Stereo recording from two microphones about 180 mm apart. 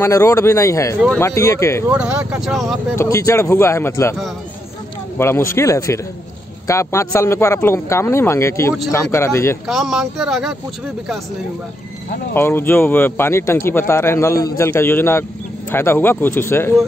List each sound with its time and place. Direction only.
0.0 s a man's voice: 15° left (ahead or behind)
1.9 s speech: 5° right (ahead or behind)
3.0 s a man's voice: 15° left (ahead or behind)
5.2 s a man's voice: 15° left (ahead or behind)
9.7 s speech: centre (ahead or behind)
12.4 s a man's voice: 10° left (ahead or behind)